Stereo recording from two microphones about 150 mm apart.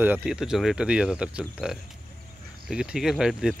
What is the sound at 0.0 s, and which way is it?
Speech, 10° right (ahead or behind).